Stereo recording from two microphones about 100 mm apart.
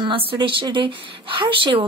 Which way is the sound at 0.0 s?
60° right (ahead or behind).